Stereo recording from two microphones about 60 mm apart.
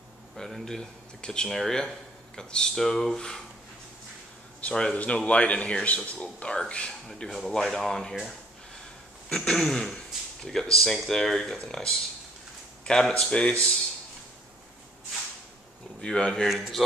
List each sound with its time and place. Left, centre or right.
0.4 s speech: centre
4.6 s speech: centre
6.9 s speech: centre
16.0 s speech: centre
16.4 s speech: centre